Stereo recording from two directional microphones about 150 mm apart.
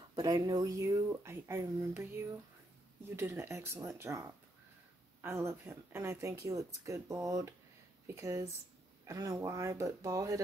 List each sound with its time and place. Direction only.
0.1 s speech: 25° right (ahead or behind)